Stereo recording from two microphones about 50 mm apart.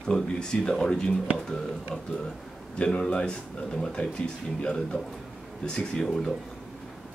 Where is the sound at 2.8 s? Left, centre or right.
Centre.